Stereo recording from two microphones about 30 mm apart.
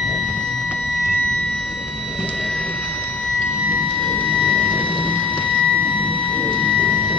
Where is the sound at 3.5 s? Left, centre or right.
Right.